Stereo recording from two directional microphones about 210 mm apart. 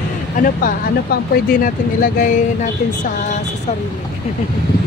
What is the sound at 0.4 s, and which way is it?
Speech, 40° left (ahead or behind).